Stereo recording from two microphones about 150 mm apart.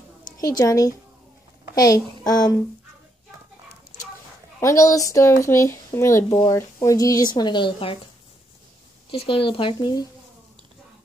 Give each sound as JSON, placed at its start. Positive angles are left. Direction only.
{"t": 0.2, "sound": "a woman's voice", "side_deg": 25}
{"t": 4.6, "sound": "speech", "side_deg": 20}
{"t": 9.1, "sound": "speech", "side_deg": 40}